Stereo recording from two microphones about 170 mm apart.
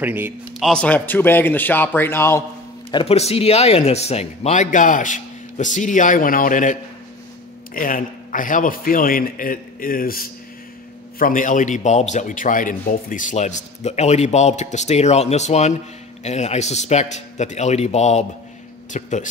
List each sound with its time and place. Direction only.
0.0 s a man's voice: 10° right (ahead or behind)
0.7 s a man's voice: 5° left (ahead or behind)
2.9 s a man's voice: 35° left (ahead or behind)
18.9 s a sound: 45° left (ahead or behind)